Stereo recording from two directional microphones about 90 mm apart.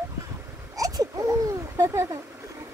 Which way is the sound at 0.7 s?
40° right (ahead or behind).